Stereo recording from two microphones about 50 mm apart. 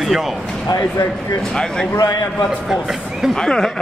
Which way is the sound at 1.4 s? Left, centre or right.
Centre.